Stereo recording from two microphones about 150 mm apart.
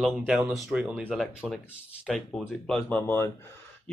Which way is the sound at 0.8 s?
15° right (ahead or behind).